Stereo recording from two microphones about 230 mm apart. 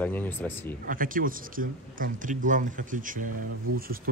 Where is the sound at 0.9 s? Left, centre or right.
Right.